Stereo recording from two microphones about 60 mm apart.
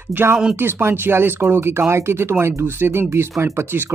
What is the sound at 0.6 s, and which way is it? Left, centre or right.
Speech, right.